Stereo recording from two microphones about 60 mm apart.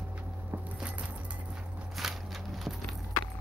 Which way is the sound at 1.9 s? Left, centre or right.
Centre.